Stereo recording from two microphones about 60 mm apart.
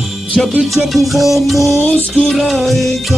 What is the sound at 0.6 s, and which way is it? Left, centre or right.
Music, centre.